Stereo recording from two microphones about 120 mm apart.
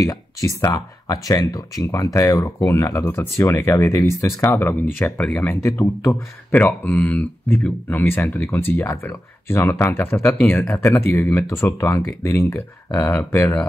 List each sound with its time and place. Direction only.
0.0 s speech: 25° left (ahead or behind)